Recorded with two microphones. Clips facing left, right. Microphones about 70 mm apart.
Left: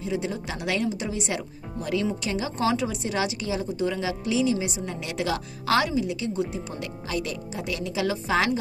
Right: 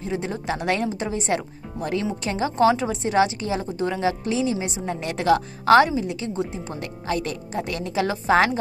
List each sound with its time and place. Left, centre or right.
0.1 s a woman's voice: right